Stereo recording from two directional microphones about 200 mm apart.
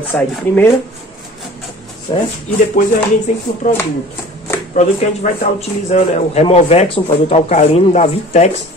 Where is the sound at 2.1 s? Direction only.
25° left (ahead or behind).